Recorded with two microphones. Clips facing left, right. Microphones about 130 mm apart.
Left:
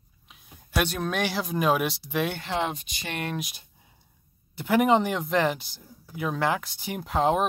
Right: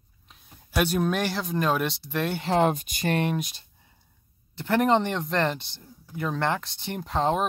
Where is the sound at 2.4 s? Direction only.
40° right (ahead or behind).